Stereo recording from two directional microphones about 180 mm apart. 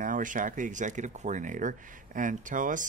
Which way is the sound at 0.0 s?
50° right (ahead or behind).